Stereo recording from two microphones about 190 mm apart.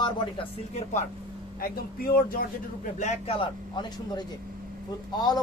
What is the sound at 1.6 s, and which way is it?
Speech, 50° left (ahead or behind).